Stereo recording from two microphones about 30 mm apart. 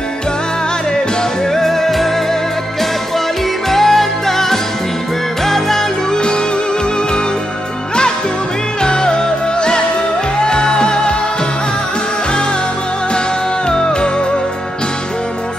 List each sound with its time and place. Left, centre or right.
1.5 s music: centre
3.7 s music: centre
6.1 s music: left
8.8 s music: left
13.7 s music: left